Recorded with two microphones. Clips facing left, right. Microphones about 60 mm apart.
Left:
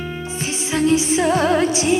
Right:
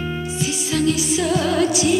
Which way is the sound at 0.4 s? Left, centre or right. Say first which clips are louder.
Left 2 dB; left.